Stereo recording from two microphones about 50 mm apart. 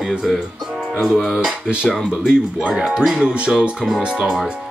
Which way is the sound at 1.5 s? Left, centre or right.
Right.